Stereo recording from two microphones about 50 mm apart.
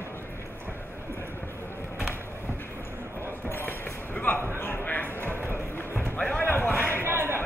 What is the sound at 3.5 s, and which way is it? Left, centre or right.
Basketball bounce, left.